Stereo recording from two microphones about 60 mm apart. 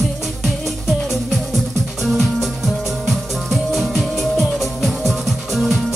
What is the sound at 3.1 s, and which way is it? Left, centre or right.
Music, centre.